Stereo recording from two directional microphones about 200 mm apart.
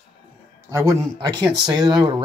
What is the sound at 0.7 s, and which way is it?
Speech, 15° right (ahead or behind).